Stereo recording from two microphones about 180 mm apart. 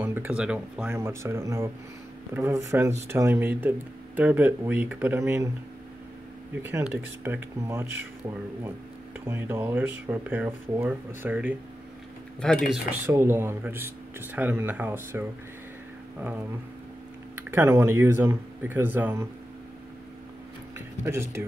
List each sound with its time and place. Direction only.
0.0 s speech: 10° right (ahead or behind)
0.9 s speech: 15° right (ahead or behind)
6.6 s speech: 10° right (ahead or behind)
12.4 s speech: 5° left (ahead or behind)
13.0 s speech: 15° right (ahead or behind)
20.7 s speech: 15° right (ahead or behind)